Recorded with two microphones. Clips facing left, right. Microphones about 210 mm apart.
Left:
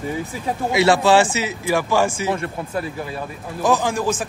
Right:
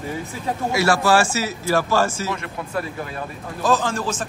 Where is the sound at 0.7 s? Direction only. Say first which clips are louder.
Left 3 dB; 20° left (ahead or behind).